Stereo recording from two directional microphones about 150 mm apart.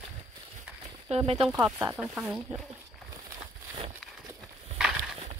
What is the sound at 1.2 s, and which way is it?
Speech, 35° right (ahead or behind).